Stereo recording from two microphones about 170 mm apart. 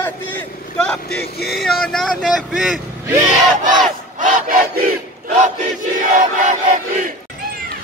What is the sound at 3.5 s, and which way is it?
Battle cry, 45° right (ahead or behind).